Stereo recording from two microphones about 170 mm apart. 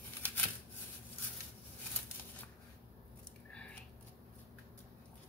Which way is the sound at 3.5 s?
5° left (ahead or behind).